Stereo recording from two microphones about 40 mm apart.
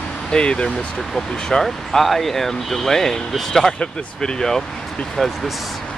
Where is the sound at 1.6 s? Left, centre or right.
Centre.